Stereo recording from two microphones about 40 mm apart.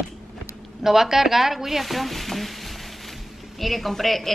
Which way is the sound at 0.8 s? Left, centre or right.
Centre.